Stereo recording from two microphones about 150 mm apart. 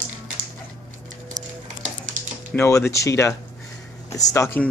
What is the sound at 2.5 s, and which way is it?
Speech, 15° left (ahead or behind).